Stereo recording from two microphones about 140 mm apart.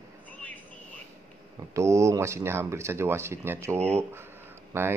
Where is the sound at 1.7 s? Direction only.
20° right (ahead or behind).